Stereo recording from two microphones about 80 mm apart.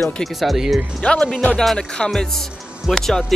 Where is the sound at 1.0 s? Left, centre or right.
Centre.